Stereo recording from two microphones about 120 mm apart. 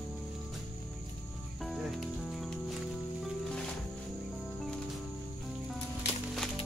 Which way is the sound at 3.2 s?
5° left (ahead or behind).